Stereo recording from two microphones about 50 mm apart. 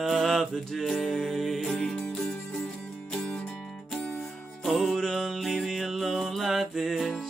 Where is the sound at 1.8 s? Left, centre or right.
Centre.